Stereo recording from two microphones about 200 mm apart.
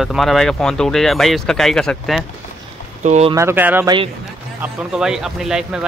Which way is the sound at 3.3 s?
15° right (ahead or behind).